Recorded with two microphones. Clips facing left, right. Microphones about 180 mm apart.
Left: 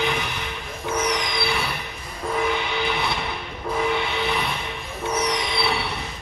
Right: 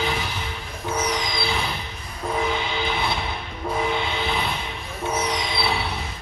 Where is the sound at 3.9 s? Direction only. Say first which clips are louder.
Left 1 dB; 20° right (ahead or behind).